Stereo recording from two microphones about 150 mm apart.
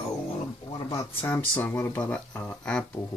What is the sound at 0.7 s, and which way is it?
Speech, 20° left (ahead or behind).